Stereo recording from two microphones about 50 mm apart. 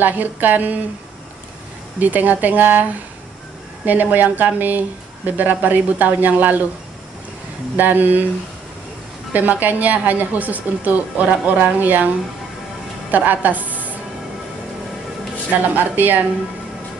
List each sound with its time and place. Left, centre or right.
0.0 s speech: right
2.0 s speech: right
3.8 s speech: right
7.7 s speech: right
9.3 s speech: right
13.1 s a woman's voice: right
15.7 s speech: right